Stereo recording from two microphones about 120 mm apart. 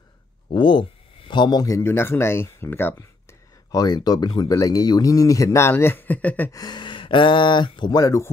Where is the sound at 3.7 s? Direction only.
35° left (ahead or behind); by 6.4 s 15° left (ahead or behind).